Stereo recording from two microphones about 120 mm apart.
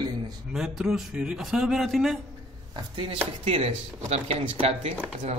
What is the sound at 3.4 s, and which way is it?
Speech, 55° right (ahead or behind).